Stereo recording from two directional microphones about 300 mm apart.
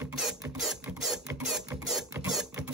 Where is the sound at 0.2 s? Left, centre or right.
Centre.